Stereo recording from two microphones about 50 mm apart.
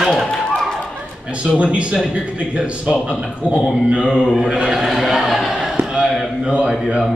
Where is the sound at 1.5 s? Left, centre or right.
Right.